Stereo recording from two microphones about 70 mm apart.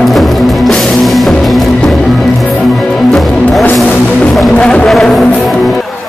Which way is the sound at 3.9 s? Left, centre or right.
Centre.